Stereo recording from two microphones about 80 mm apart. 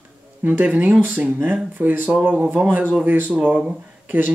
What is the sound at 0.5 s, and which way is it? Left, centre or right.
Speech, centre.